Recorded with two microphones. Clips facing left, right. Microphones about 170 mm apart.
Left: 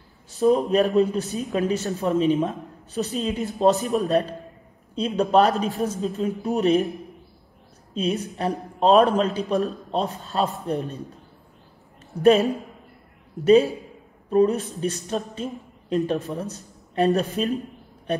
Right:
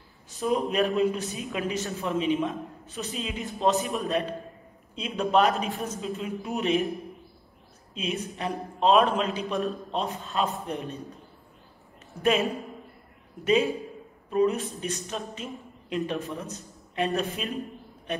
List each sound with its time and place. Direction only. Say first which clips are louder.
0.4 s speech: left 7 dB; 35° left (ahead or behind)
7.9 s speech: left 6 dB; 35° left (ahead or behind)
12.1 s a woman's voice: left 8 dB; 35° left (ahead or behind)